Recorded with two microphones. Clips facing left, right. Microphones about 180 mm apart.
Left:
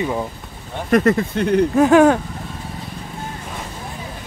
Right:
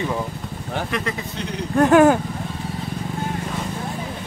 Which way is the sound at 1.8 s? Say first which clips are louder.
Even; centre (ahead or behind).